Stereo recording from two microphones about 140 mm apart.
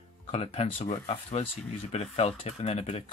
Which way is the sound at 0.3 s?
45° left (ahead or behind).